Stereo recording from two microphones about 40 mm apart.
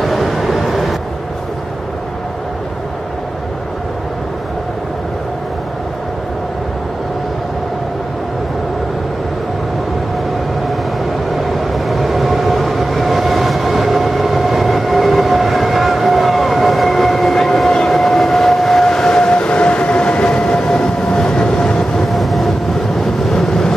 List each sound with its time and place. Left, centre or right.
0.0 s train: centre
11.3 s train: centre
22.1 s train: centre
22.9 s vehicle: centre